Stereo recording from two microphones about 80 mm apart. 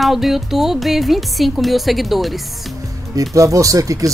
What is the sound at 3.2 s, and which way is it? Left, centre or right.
Speech, right.